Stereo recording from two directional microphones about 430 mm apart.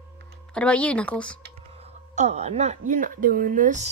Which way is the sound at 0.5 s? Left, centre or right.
Centre.